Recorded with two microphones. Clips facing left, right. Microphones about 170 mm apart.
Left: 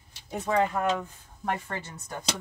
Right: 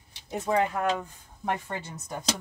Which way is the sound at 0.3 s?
5° right (ahead or behind).